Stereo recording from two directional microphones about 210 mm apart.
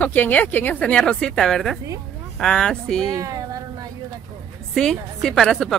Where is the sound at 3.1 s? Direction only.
15° right (ahead or behind).